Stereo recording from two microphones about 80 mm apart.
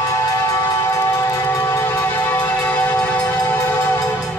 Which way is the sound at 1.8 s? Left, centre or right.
Left.